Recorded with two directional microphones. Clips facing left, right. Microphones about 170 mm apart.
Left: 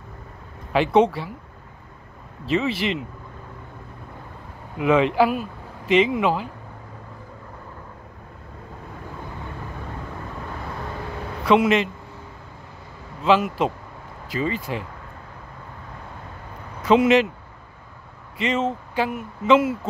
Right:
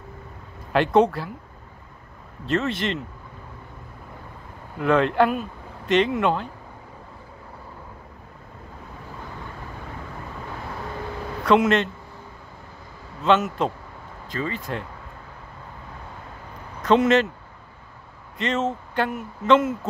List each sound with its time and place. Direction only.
0.7 s speech: centre (ahead or behind)
2.4 s speech: centre (ahead or behind)
4.7 s speech: 5° left (ahead or behind)
11.4 s speech: 5° left (ahead or behind)
13.2 s speech: 5° left (ahead or behind)
16.8 s speech: 5° left (ahead or behind)
18.4 s speech: centre (ahead or behind)